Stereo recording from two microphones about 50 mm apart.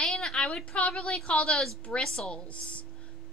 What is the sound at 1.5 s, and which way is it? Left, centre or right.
A woman's voice, centre.